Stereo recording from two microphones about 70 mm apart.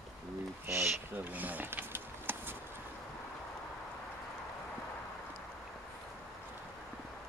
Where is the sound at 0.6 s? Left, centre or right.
Right.